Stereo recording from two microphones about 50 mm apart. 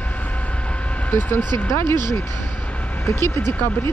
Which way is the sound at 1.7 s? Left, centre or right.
Left.